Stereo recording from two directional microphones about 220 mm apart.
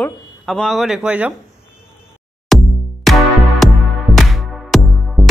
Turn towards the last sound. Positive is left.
turn(degrees=0)  # may be behind; listen again after turning